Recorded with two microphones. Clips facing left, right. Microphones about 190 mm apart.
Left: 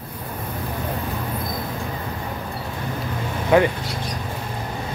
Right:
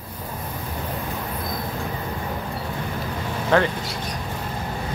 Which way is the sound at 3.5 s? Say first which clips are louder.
Left 3 dB; 10° left (ahead or behind).